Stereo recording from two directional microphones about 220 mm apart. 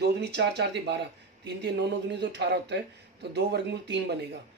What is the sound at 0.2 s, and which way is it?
Speech, 50° right (ahead or behind).